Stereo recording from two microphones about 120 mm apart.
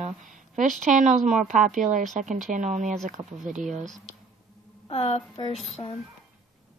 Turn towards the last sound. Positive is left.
turn(degrees=55)  # may be behind; listen again after turning